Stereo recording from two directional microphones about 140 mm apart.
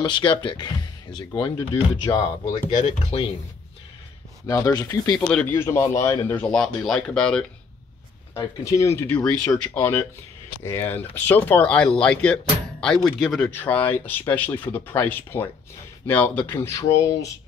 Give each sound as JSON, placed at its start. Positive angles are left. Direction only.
{"t": 0.0, "sound": "speech", "side_deg": 35}
{"t": 4.5, "sound": "speech", "side_deg": 25}
{"t": 5.3, "sound": "speech", "side_deg": 15}
{"t": 6.2, "sound": "speech", "side_deg": 10}
{"t": 8.4, "sound": "speech", "side_deg": 20}